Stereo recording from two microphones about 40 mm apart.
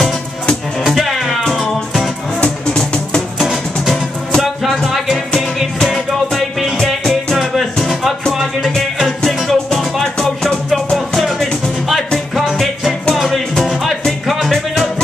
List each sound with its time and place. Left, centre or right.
0.8 s music: centre
2.4 s music: left
3.3 s music: centre
7.3 s music: centre
9.2 s music: centre
11.1 s music: centre
13.1 s music: centre